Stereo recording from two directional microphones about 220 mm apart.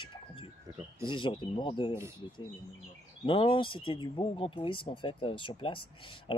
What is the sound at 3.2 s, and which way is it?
Speech, 25° left (ahead or behind).